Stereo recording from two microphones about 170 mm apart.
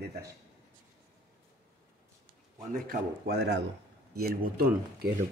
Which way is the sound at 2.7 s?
65° right (ahead or behind).